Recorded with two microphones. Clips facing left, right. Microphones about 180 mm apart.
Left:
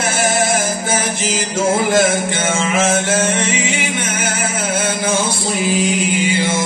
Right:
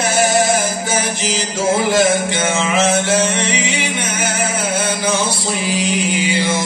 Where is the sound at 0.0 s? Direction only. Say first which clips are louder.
Right 2 dB; 50° left (ahead or behind).